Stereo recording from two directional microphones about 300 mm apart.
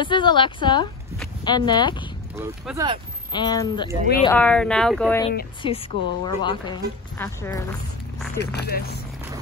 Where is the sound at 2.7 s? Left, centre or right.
Centre.